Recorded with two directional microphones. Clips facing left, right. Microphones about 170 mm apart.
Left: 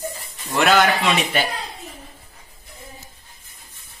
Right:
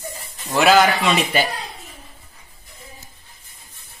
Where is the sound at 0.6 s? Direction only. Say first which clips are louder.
Right 2 dB; centre (ahead or behind).